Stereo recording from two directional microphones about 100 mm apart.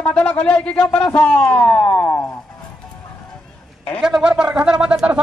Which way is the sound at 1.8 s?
25° left (ahead or behind).